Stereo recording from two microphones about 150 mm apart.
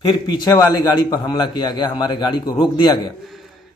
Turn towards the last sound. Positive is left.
turn(degrees=30)  # may be behind; listen again after turning